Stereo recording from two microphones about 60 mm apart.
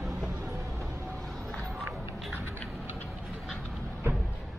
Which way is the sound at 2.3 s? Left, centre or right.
Right.